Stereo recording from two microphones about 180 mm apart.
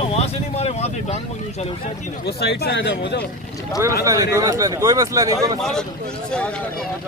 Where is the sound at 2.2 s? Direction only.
65° left (ahead or behind).